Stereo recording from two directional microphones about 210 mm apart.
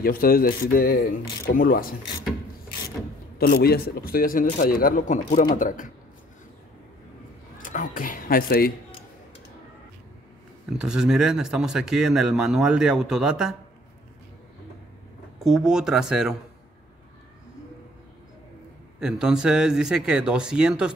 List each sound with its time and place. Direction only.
0.0 s a man's voice: 45° left (ahead or behind)
3.3 s a man's voice: 45° left (ahead or behind)
7.5 s a sound: 40° left (ahead or behind)
10.8 s speech: 5° right (ahead or behind)
15.3 s speech: centre (ahead or behind)
18.9 s speech: 5° right (ahead or behind)